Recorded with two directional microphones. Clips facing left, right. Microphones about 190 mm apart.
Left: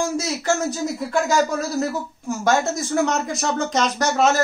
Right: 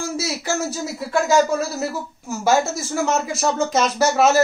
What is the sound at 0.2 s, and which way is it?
Speech, 10° right (ahead or behind).